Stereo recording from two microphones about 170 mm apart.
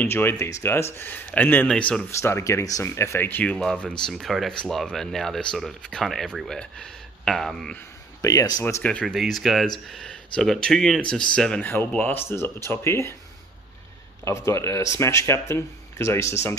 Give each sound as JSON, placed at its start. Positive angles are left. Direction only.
{"t": 0.0, "sound": "speech", "side_deg": 15}
{"t": 8.2, "sound": "speech", "side_deg": 20}
{"t": 8.8, "sound": "speech", "side_deg": 5}
{"t": 14.2, "sound": "speech", "side_deg": 15}